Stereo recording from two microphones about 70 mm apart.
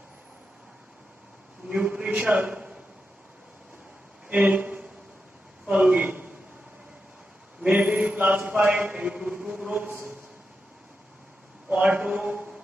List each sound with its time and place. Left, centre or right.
1.7 s a man's voice: centre
4.3 s a man's voice: right
7.6 s a sound: right
11.7 s a man's voice: centre